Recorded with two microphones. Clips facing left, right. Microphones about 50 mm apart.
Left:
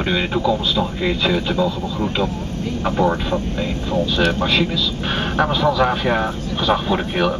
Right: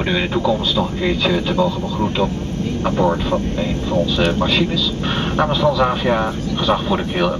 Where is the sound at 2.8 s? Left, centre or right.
Centre.